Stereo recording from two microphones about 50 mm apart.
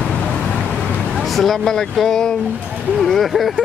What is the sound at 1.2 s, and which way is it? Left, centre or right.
Speech, centre.